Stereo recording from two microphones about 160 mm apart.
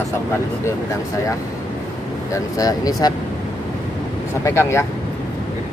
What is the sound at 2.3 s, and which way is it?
Speech, 20° left (ahead or behind).